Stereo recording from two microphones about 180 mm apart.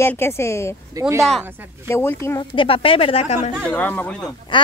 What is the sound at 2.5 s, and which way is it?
Speech, 30° left (ahead or behind).